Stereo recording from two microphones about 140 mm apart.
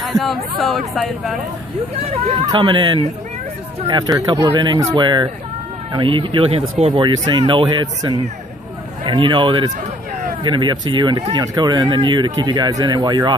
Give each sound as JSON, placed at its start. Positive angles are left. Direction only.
{"t": 0.0, "sound": "speech", "side_deg": 0}
{"t": 2.0, "sound": "speech", "side_deg": -45}
{"t": 2.4, "sound": "speech", "side_deg": -35}
{"t": 4.3, "sound": "speech", "side_deg": -30}
{"t": 7.0, "sound": "speech", "side_deg": -35}